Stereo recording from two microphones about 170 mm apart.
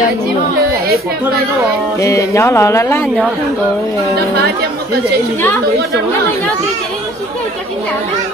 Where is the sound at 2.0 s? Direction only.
20° left (ahead or behind).